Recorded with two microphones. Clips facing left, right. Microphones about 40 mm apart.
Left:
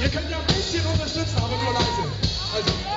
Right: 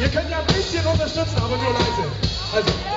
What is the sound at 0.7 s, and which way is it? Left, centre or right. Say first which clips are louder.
Speech: right 5 dB; centre.